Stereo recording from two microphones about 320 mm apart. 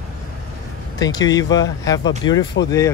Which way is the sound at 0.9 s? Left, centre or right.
Centre.